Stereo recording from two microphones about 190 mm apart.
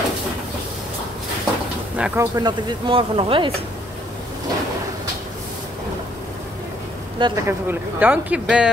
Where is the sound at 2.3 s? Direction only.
25° right (ahead or behind).